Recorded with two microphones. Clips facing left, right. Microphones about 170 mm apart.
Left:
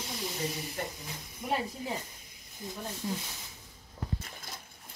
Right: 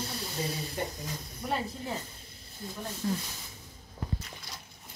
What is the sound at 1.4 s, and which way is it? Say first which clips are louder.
Speech: left 1 dB; 10° left (ahead or behind).